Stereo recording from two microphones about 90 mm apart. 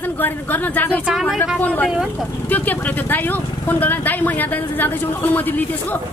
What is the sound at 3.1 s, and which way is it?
A woman's voice, 20° left (ahead or behind).